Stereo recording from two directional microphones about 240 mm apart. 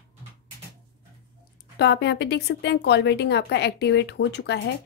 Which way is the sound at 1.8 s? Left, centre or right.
Left.